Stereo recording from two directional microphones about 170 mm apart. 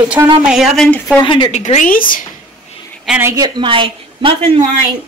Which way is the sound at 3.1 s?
15° right (ahead or behind).